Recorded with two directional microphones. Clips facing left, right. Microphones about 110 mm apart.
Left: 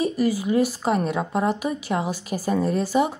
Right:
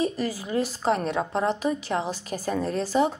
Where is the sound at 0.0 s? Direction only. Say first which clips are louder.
Left 5 dB; 15° left (ahead or behind).